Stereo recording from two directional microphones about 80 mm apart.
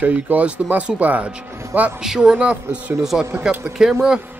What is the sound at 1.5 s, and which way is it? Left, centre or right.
Speech, right.